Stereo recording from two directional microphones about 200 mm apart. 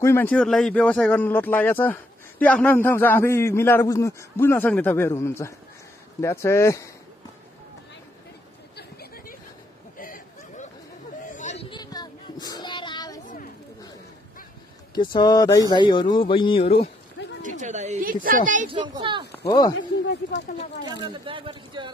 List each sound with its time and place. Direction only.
0.0 s speech: 10° left (ahead or behind)
8.7 s chatter: 50° left (ahead or behind)
9.9 s a sound: 45° left (ahead or behind)
11.7 s child singing: 20° left (ahead or behind)
13.2 s children playing: 40° left (ahead or behind)
15.0 s speech: 20° left (ahead or behind)
17.6 s speech: 35° right (ahead or behind)
18.7 s speech: 25° right (ahead or behind)
19.3 s speech: 15° left (ahead or behind)
20.1 s speech: 60° left (ahead or behind)
21.1 s speech: 25° right (ahead or behind)